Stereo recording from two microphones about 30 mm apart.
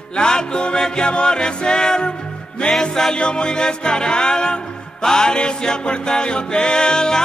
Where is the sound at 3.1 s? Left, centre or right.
Left.